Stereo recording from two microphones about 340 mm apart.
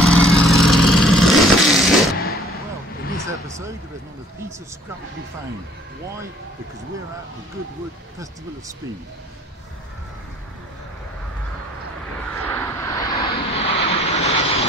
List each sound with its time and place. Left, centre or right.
0.0 s vehicle: centre
3.3 s a sound: centre
12.4 s vehicle: centre